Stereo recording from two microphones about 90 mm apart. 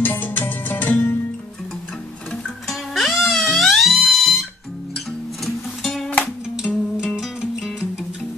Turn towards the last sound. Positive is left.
turn(degrees=-5)  # may be behind; listen again after turning